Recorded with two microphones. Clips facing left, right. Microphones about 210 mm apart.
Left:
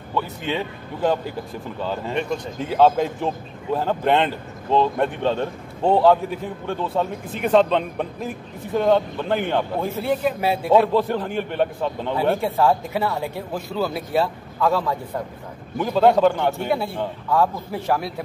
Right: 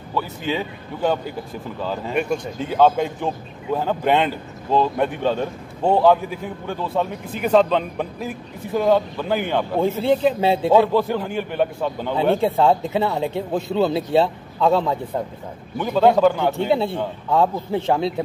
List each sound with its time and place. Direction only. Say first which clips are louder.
0.1 s a man's voice: right 1 dB; centre (ahead or behind)
10.0 s speech: right 3 dB; 25° right (ahead or behind)
10.7 s a man's voice: left 1 dB; centre (ahead or behind)
12.5 s speech: right 2 dB; 20° right (ahead or behind)
15.8 s a man's voice: right 1 dB; centre (ahead or behind)
16.5 s speech: right 4 dB; 25° right (ahead or behind)